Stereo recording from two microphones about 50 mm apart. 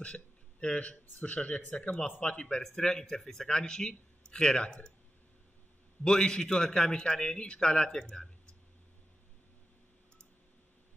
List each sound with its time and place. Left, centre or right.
0.0 s a man's voice: left
2.4 s a man's voice: centre
6.0 s a man's voice: centre